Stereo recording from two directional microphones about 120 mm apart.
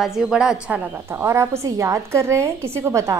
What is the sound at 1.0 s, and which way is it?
A woman's voice, 25° right (ahead or behind).